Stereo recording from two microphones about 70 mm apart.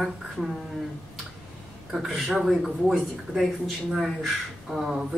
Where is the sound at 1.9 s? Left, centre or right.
Centre.